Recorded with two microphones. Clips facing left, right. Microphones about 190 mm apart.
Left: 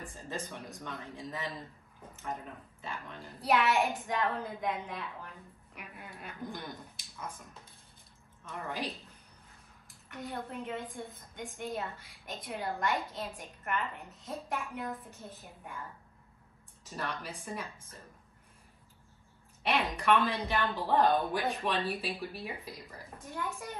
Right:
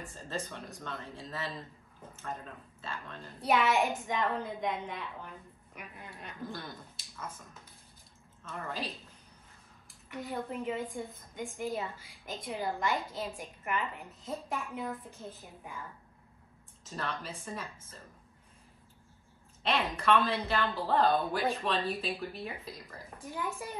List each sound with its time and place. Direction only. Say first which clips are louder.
0.0 s speech: right 1 dB; 15° left (ahead or behind)
3.3 s a woman's voice: even; centre (ahead or behind)
6.4 s speech: even; 15° left (ahead or behind)
8.5 s speech: left 1 dB; 15° left (ahead or behind)
10.0 s a woman's voice: right 3 dB; centre (ahead or behind)
16.8 s speech: right 1 dB; 15° left (ahead or behind)
19.6 s speech: even; 15° left (ahead or behind)